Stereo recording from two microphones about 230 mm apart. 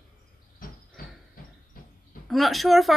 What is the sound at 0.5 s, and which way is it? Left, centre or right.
Cricket, left.